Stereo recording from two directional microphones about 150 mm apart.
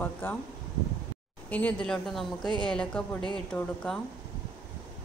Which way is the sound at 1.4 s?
10° left (ahead or behind).